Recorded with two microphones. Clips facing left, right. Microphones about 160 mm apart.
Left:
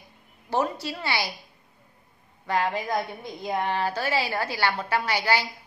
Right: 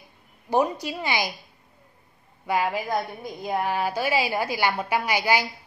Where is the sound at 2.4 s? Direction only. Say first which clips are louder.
Right 1 dB; 10° right (ahead or behind).